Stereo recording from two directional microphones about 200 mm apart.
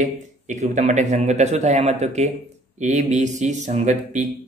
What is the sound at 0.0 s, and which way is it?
Speech, 35° right (ahead or behind).